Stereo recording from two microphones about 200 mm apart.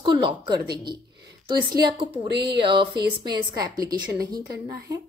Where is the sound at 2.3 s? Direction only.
55° right (ahead or behind).